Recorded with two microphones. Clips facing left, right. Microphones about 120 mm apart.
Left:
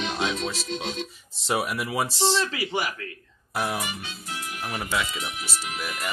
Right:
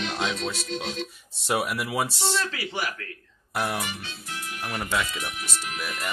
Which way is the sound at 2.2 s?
25° left (ahead or behind).